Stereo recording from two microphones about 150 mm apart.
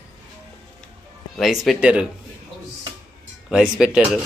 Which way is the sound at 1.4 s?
Centre (ahead or behind).